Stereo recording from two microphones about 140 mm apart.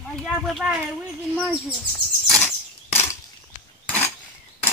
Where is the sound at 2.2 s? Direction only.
Centre (ahead or behind).